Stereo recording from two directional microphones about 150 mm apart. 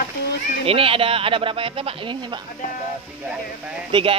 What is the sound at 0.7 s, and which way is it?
Speech, 40° right (ahead or behind).